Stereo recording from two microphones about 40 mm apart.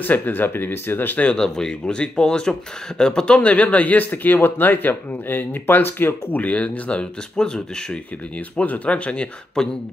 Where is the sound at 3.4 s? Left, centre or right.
Left.